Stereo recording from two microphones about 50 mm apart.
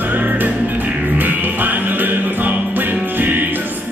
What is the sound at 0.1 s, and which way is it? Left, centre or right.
Music, right.